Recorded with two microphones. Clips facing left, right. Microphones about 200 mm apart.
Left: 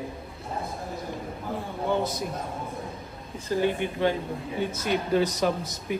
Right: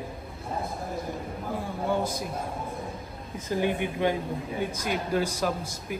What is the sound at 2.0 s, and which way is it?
Speech, 10° right (ahead or behind).